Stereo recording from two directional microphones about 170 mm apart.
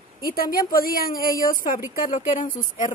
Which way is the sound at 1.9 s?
55° left (ahead or behind).